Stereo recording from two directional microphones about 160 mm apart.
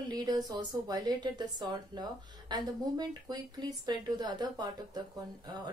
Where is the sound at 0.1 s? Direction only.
25° right (ahead or behind).